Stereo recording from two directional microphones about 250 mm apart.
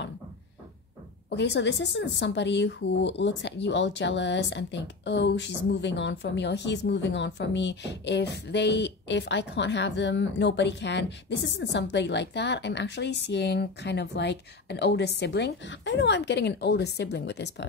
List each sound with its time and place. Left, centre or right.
1.3 s speech: left